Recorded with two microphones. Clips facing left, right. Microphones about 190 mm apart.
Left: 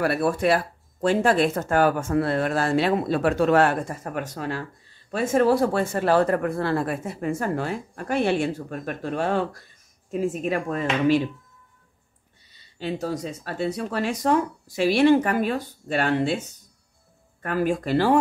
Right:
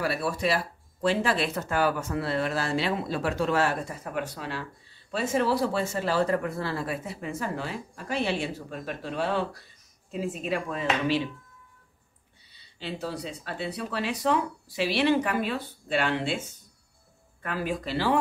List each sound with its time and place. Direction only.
0.0 s speech: 55° left (ahead or behind)
12.5 s a sound: 45° left (ahead or behind)
13.0 s speech: 45° left (ahead or behind)
17.4 s speech: 50° left (ahead or behind)